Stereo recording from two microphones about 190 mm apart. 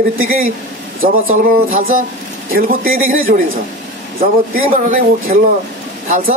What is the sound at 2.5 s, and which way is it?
Speech, 50° right (ahead or behind).